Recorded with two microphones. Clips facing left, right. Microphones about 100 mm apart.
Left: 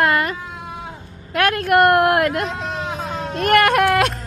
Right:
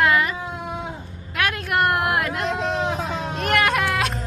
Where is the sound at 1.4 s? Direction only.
50° left (ahead or behind).